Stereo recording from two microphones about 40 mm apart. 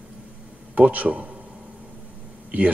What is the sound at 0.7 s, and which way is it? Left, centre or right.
Speech, right.